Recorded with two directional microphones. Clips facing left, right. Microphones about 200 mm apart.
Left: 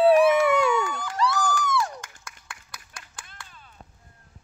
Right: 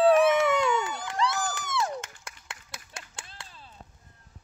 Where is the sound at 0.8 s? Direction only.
20° right (ahead or behind).